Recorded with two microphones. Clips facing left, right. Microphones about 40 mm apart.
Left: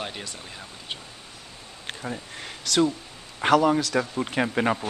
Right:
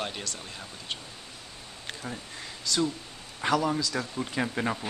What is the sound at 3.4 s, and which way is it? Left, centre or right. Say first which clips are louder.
Speech: left 7 dB; left.